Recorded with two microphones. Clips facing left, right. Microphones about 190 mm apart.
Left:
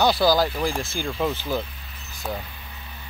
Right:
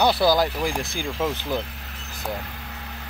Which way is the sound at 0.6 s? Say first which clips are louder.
Even; 5° right (ahead or behind).